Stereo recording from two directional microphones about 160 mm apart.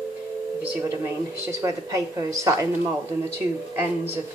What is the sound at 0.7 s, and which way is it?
A woman's voice, 15° right (ahead or behind).